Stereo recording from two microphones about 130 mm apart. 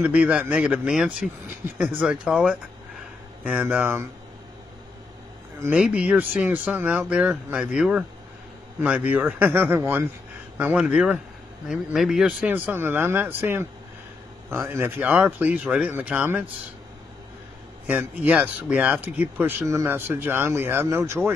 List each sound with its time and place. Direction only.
0.0 s speech: 10° right (ahead or behind)
5.8 s speech: 10° right (ahead or behind)
12.4 s speech: 15° right (ahead or behind)
17.8 s speech: 10° right (ahead or behind)